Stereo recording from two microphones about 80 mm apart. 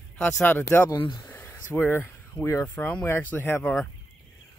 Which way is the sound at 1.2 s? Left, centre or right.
Left.